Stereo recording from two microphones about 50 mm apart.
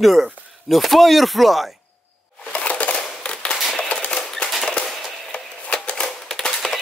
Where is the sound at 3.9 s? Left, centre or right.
Left.